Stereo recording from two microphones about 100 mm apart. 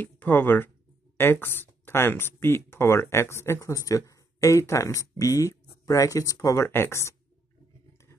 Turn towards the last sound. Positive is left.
turn(degrees=30)  # may be behind; listen again after turning